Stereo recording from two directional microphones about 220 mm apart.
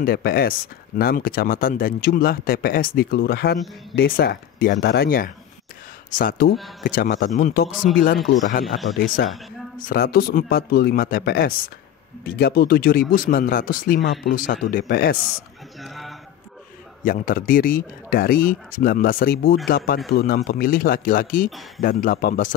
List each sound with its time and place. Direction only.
0.0 s speech: 45° left (ahead or behind)
8.9 s speech: 45° left (ahead or behind)
15.8 s a sound: centre (ahead or behind)
17.0 s speech: 40° left (ahead or behind)